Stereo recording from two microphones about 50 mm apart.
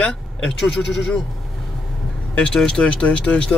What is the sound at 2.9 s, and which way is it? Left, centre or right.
Speech, left.